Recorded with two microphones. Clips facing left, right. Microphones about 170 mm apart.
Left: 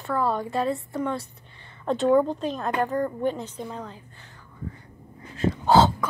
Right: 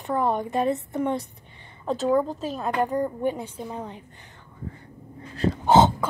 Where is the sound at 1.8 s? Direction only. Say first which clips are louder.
Left 2 dB; centre (ahead or behind); by 4.0 s 15° right (ahead or behind).